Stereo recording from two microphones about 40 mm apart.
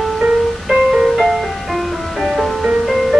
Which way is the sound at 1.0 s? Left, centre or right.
Centre.